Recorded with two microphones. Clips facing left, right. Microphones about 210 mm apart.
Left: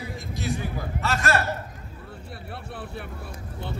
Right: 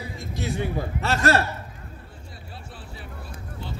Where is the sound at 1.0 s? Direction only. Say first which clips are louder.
Right 3 dB; 30° right (ahead or behind).